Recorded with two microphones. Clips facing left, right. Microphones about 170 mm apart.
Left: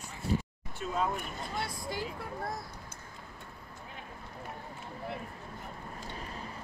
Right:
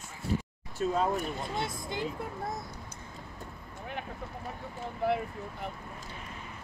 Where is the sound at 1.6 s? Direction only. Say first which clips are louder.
Even; 20° right (ahead or behind).